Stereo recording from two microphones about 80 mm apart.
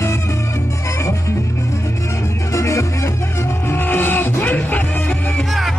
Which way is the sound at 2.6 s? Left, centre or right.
Left.